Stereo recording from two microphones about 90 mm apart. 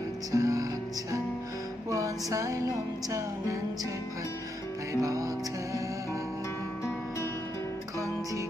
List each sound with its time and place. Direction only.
0.3 s music: 40° right (ahead or behind)
1.9 s music: 40° right (ahead or behind)
5.0 s music: 40° right (ahead or behind)